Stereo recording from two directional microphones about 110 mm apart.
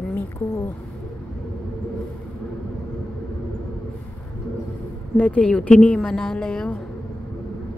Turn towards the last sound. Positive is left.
turn(degrees=5)  # may be behind; listen again after turning